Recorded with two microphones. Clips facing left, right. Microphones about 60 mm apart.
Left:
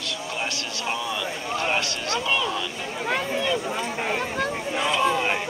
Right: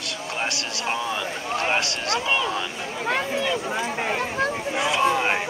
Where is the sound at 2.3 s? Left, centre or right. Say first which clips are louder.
Even; centre.